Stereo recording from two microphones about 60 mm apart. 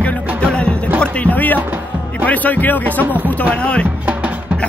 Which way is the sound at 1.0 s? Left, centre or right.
Left.